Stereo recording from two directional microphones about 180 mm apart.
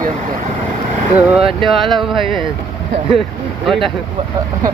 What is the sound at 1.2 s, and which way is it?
Speech, 10° right (ahead or behind).